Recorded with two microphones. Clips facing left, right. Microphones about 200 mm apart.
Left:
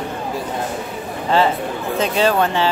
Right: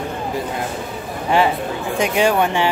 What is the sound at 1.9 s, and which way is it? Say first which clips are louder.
Speech: even; 15° right (ahead or behind).